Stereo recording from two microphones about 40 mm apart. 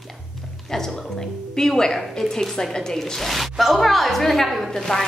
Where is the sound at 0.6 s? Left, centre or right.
Centre.